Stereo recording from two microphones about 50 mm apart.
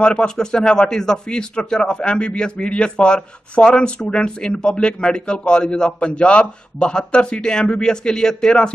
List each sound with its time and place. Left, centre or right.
0.0 s a man's voice: centre